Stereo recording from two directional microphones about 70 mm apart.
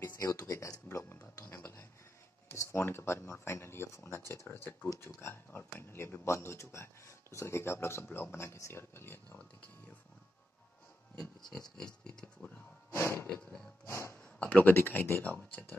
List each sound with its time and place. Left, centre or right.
0.2 s a sound: left
2.5 s speech: left
11.7 s pig: centre
12.9 s speech: left
13.3 s pig: centre
13.8 s speech: left
14.1 s speech: left